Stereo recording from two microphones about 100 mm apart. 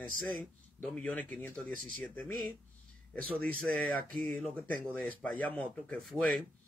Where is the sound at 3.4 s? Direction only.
10° left (ahead or behind).